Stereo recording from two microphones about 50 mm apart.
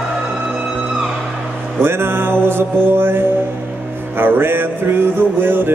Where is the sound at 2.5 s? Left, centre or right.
Right.